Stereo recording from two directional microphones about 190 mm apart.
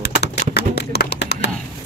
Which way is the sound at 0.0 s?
60° left (ahead or behind).